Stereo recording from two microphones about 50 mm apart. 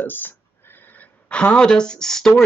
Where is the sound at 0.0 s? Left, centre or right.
Left.